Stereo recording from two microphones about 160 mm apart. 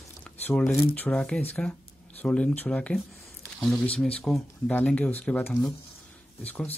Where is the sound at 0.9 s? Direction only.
5° left (ahead or behind).